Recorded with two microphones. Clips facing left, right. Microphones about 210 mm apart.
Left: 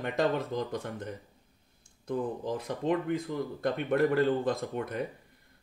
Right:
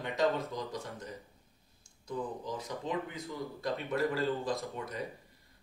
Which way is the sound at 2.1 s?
55° left (ahead or behind).